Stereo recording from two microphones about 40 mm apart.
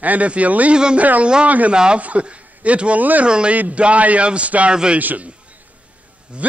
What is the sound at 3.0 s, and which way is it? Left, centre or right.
Speech, right.